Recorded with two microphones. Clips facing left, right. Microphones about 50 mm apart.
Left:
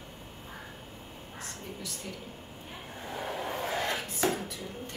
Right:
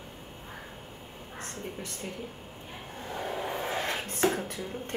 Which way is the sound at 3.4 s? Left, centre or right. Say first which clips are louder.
Right 1 dB; centre.